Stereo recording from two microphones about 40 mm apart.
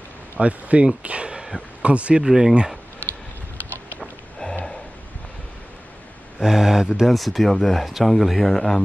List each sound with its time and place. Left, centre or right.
0.4 s speech: right
2.2 s speech: centre
6.4 s speech: centre
7.1 s speech: centre